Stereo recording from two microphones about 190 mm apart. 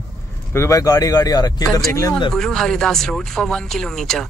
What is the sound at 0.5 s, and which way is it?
Speech, 15° left (ahead or behind).